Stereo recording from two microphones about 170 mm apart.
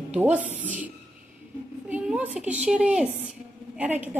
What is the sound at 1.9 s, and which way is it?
A woman's voice, 5° right (ahead or behind).